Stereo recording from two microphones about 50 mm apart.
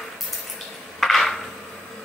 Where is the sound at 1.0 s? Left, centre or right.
Centre.